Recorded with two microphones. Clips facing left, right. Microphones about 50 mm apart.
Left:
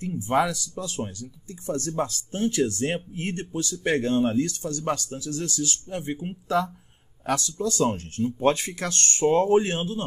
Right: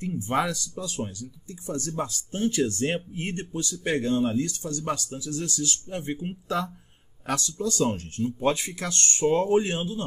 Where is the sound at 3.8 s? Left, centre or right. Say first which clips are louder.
Left 2 dB; left.